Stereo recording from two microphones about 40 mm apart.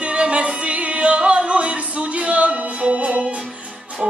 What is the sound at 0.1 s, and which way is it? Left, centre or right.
Music, right.